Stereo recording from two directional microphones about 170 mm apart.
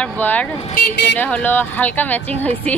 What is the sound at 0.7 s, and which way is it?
Speech, 60° left (ahead or behind).